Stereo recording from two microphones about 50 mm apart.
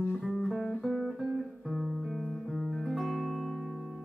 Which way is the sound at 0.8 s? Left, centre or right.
Centre.